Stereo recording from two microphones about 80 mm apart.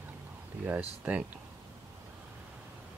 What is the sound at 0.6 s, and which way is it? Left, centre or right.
Speech, centre.